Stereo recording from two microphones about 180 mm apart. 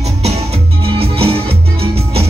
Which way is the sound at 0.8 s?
30° right (ahead or behind).